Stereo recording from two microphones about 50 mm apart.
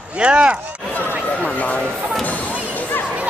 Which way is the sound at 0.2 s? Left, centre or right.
Right.